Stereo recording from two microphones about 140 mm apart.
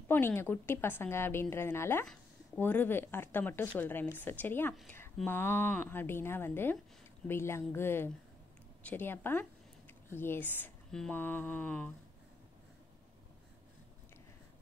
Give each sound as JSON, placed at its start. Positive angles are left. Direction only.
{"t": 0.1, "sound": "speech", "side_deg": 15}